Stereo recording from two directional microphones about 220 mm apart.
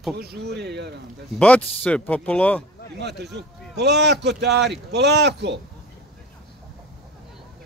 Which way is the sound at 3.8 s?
50° right (ahead or behind).